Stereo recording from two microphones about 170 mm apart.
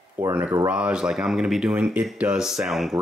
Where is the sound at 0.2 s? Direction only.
10° right (ahead or behind).